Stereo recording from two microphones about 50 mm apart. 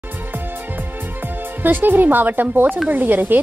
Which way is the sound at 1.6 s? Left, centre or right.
Right.